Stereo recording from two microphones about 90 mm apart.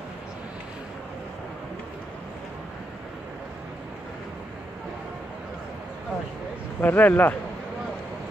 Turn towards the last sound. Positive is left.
turn(degrees=20)  # may be behind; listen again after turning